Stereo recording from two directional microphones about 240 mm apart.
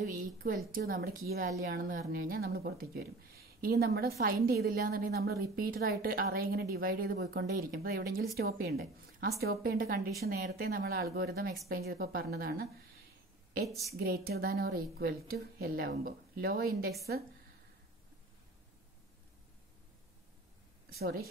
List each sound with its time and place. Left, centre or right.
0.0 s a sound: right
0.7 s speech: right
13.7 s a woman's voice: centre
13.9 s speech: right
20.9 s speech: right